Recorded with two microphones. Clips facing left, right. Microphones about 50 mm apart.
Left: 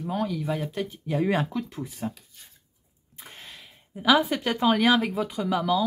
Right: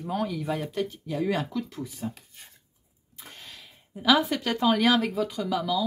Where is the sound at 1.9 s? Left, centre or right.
Left.